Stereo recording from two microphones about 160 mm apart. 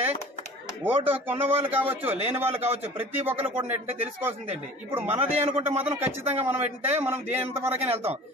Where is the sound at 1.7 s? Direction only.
10° right (ahead or behind).